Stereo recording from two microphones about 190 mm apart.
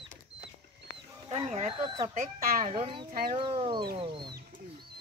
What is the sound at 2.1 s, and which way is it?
Speech, 40° right (ahead or behind).